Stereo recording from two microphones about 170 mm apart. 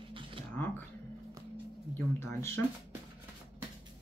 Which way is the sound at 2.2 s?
15° left (ahead or behind).